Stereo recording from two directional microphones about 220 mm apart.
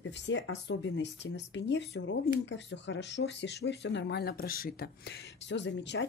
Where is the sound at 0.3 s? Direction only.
50° left (ahead or behind).